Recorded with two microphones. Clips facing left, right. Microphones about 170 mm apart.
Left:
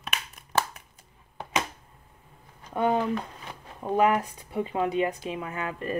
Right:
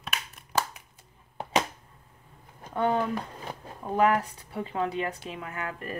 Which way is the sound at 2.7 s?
15° left (ahead or behind).